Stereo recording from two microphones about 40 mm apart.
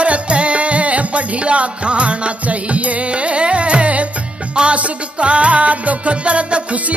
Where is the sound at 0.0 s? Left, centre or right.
Right.